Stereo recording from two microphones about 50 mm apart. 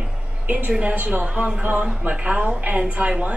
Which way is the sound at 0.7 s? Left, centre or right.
Right.